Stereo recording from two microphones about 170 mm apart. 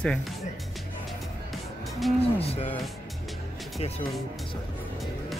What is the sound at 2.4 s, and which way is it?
Speech, 35° left (ahead or behind).